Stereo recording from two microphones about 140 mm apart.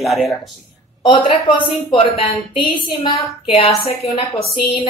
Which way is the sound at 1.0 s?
35° left (ahead or behind).